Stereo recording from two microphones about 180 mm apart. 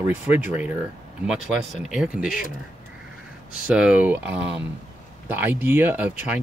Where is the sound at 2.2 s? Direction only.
50° left (ahead or behind).